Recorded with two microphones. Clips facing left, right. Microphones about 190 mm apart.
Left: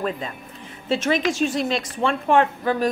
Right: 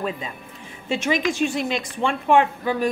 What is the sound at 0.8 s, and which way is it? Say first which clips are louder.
A woman's voice: left 1 dB; 15° right (ahead or behind).